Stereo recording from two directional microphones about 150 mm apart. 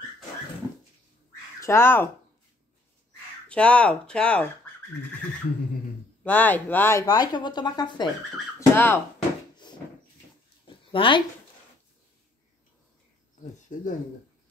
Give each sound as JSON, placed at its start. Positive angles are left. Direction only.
{"t": 1.6, "sound": "speech", "side_deg": 20}
{"t": 3.4, "sound": "speech", "side_deg": 10}
{"t": 6.2, "sound": "speech", "side_deg": 10}
{"t": 8.5, "sound": "speech", "side_deg": 15}
{"t": 10.9, "sound": "speech", "side_deg": 35}
{"t": 13.6, "sound": "a sound", "side_deg": 55}